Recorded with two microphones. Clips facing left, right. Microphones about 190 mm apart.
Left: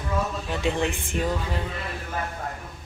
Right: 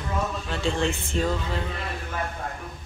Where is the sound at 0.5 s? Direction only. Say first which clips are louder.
Left 1 dB; 15° left (ahead or behind).